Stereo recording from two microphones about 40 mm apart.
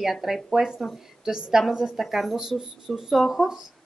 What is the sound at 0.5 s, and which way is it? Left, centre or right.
A woman's voice, centre.